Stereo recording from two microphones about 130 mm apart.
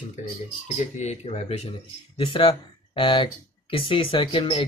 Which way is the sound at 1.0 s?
60° left (ahead or behind).